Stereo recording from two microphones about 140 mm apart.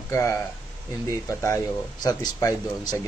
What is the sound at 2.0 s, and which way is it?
Speech, 25° left (ahead or behind).